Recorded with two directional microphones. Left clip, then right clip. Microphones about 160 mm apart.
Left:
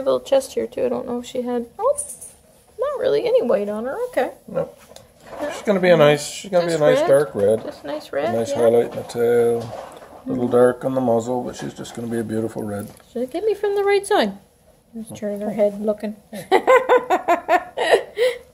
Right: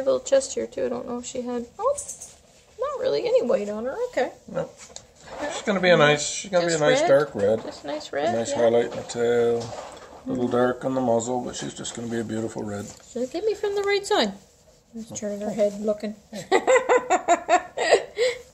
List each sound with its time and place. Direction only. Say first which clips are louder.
0.0 s speech: left 3 dB; 10° left (ahead or behind)
5.5 s speech: left 4 dB; 45° left (ahead or behind)
7.1 s speech: left 3 dB; 25° left (ahead or behind)
7.6 s speech: left 3 dB; centre (ahead or behind)
8.6 s speech: left 5 dB; 40° left (ahead or behind)
13.1 s speech: left 4 dB; 5° left (ahead or behind)
15.0 s a sound: left 4 dB; 10° left (ahead or behind)